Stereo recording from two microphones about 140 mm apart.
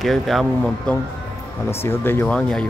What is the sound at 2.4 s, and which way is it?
Speech, 5° left (ahead or behind).